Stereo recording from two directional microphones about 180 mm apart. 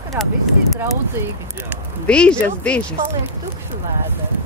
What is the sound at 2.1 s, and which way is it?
Speech, 5° left (ahead or behind).